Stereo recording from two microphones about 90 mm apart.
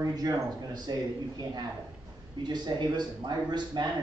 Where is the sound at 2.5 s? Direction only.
55° right (ahead or behind).